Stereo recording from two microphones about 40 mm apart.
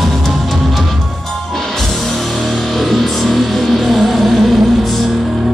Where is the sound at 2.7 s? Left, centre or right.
Centre.